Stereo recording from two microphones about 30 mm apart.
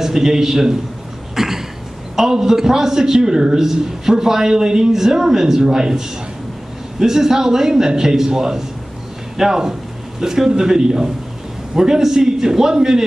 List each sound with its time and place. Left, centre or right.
0.0 s a man's voice: centre
1.3 s cough: centre
2.1 s a man's voice: centre